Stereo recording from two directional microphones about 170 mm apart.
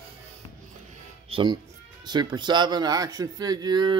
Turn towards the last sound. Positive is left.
turn(degrees=-25)  # may be behind; listen again after turning